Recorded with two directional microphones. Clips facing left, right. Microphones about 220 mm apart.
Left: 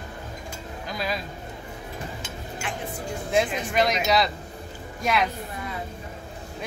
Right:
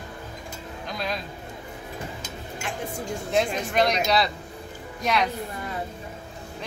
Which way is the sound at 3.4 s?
Centre (ahead or behind).